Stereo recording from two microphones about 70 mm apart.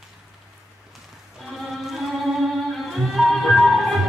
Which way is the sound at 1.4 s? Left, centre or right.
Centre.